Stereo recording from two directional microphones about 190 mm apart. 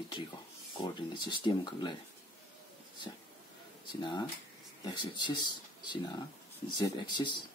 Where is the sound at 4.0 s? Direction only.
25° left (ahead or behind).